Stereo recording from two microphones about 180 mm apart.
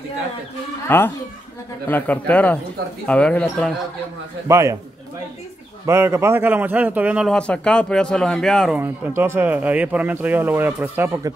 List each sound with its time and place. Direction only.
0.8 s a man's voice: 10° left (ahead or behind)
4.5 s speech: 15° right (ahead or behind)
5.9 s speech: 15° right (ahead or behind)
7.3 s speech: 5° left (ahead or behind)
8.7 s speech: 10° right (ahead or behind)